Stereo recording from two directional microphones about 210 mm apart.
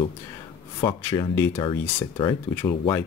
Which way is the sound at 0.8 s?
20° left (ahead or behind).